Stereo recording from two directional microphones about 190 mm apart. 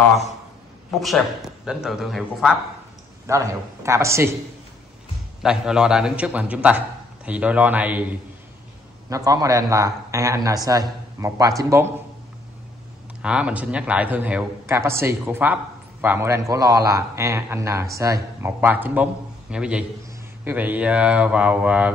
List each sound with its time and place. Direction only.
0.9 s a man's voice: centre (ahead or behind)
3.3 s a man's voice: 15° right (ahead or behind)
5.4 s a man's voice: 5° right (ahead or behind)
13.2 s a man's voice: 5° right (ahead or behind)